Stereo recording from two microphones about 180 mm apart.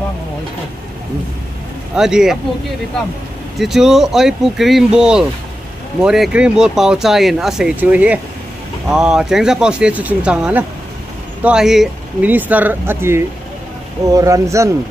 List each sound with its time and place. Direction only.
2.0 s speech: 5° right (ahead or behind)
3.5 s speech: centre (ahead or behind); by 14.7 s 15° right (ahead or behind)